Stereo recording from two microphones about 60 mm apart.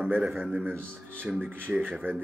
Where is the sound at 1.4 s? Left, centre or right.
Right.